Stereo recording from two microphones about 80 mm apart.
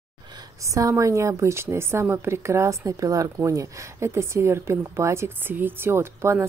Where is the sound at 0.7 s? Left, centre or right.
Right.